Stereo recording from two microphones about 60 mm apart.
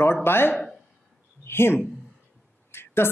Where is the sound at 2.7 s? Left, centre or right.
Left.